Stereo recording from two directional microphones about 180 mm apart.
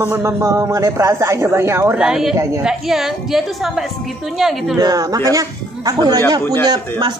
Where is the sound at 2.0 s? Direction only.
5° right (ahead or behind).